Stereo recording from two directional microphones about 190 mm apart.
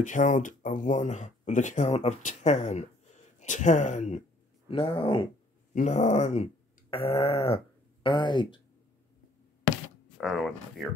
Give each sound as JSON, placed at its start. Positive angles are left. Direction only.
{"t": 0.0, "sound": "speech", "side_deg": 40}
{"t": 4.6, "sound": "speech", "side_deg": 30}
{"t": 5.8, "sound": "groan", "side_deg": 40}
{"t": 10.1, "sound": "speech", "side_deg": 0}